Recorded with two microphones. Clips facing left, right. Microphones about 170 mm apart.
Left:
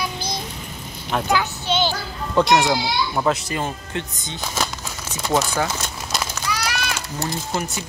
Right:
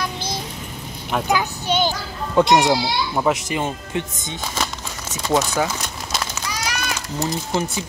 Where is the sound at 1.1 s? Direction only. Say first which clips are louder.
Even; 15° right (ahead or behind).